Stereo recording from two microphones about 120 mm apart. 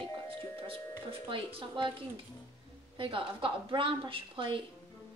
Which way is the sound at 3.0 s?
45° right (ahead or behind).